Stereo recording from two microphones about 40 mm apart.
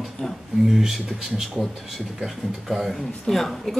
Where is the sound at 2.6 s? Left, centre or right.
Centre.